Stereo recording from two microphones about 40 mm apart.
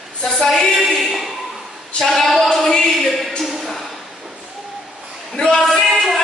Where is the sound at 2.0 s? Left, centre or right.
Centre.